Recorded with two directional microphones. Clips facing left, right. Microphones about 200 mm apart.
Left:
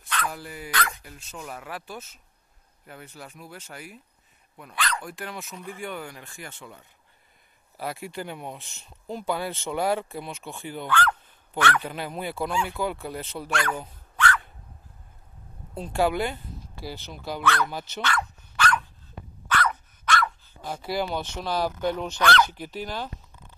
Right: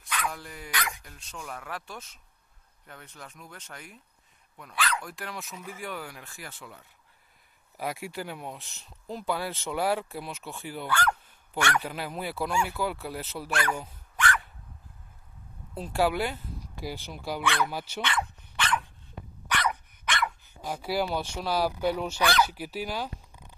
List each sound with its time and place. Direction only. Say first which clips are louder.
0.3 s speech: left 3 dB; 5° left (ahead or behind)
0.7 s speech: left 4 dB; 15° right (ahead or behind)
1.0 s speech: left 3 dB; 5° left (ahead or behind); by 14.4 s 10° right (ahead or behind)
15.7 s speech: left 2 dB; 5° right (ahead or behind)
18.0 s dog: left 4 dB; 25° right (ahead or behind)